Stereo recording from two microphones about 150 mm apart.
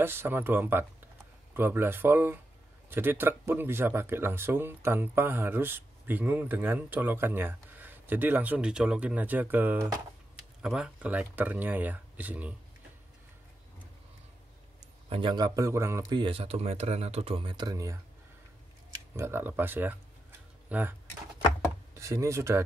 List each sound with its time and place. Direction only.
0.0 s speech: 15° right (ahead or behind)
15.0 s a man's voice: 35° right (ahead or behind); by 16.2 s 20° right (ahead or behind)
16.2 s speech: 40° right (ahead or behind)
19.1 s speech: 15° right (ahead or behind)
21.9 s speech: 20° right (ahead or behind)